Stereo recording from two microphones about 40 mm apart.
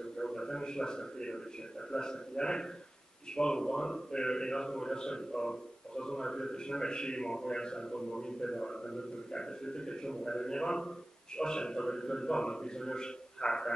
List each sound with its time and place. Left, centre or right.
0.2 s a man's voice: centre